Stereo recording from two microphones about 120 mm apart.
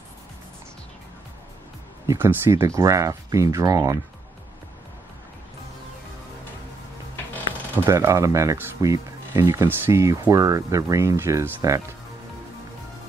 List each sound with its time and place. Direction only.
2.0 s speech: 20° right (ahead or behind)
7.8 s speech: 20° right (ahead or behind)